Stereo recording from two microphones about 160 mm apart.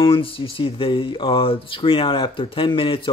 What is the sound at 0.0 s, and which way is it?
Speech, 35° left (ahead or behind).